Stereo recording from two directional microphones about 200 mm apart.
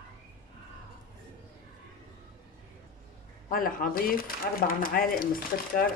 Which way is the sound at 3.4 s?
45° left (ahead or behind).